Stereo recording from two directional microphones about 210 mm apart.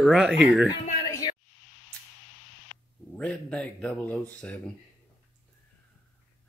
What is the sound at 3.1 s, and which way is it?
Speech, 5° left (ahead or behind).